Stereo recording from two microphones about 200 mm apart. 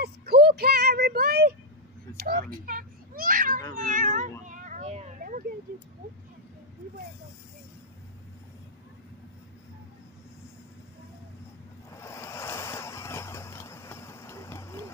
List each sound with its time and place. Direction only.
0.0 s child singing: 55° right (ahead or behind)
2.4 s a sound: 45° right (ahead or behind)
3.8 s cat: 40° right (ahead or behind)
11.9 s waves: 15° left (ahead or behind)